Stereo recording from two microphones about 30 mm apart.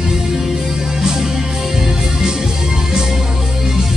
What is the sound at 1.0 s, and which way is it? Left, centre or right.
Music, centre.